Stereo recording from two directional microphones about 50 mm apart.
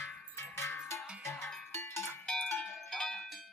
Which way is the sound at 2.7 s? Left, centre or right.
Centre.